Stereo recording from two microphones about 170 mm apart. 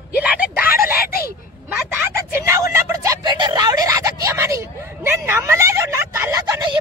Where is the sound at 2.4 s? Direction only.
15° right (ahead or behind).